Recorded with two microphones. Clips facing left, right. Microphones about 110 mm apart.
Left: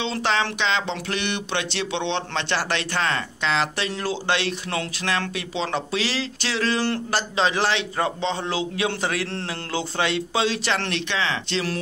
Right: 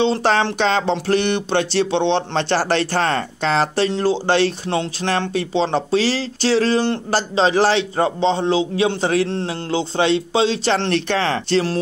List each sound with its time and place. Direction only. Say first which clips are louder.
0.0 s a man's voice: right 7 dB; 35° right (ahead or behind)